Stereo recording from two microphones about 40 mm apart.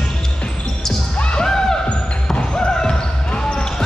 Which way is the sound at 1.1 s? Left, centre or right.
Left.